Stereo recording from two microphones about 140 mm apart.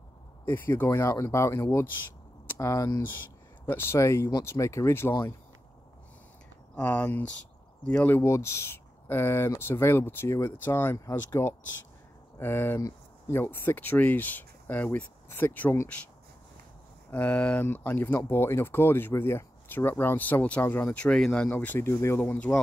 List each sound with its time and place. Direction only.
0.5 s speech: 20° left (ahead or behind)
6.7 s speech: 10° left (ahead or behind)
17.1 s speech: 10° left (ahead or behind)